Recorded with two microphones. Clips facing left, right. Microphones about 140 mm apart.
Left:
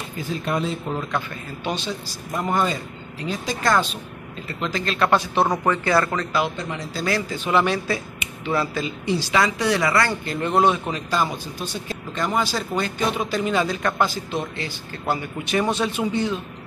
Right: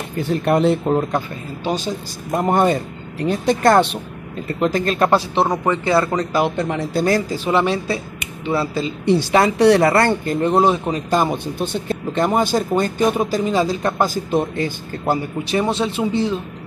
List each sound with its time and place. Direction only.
0.2 s speech: 65° right (ahead or behind)
0.9 s speech: 45° right (ahead or behind); by 4.0 s 60° right (ahead or behind)
4.6 s a man's voice: 50° right (ahead or behind); by 6.0 s 25° right (ahead or behind)
6.4 s a man's voice: 60° right (ahead or behind); by 8.9 s 30° right (ahead or behind)
9.0 s speech: 60° right (ahead or behind)
10.4 s speech: 35° right (ahead or behind)
11.1 s speech: 50° right (ahead or behind)
13.5 s speech: 30° right (ahead or behind); by 15.1 s 50° right (ahead or behind)
15.4 s a man's voice: 30° right (ahead or behind)